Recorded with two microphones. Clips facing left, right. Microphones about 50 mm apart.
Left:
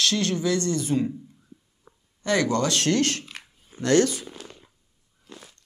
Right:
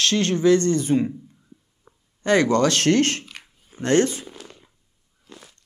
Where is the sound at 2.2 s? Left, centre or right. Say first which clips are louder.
Right 5 dB; right.